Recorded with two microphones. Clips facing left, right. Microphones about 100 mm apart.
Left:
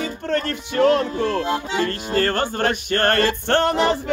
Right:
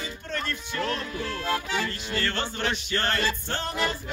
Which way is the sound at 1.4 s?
20° left (ahead or behind).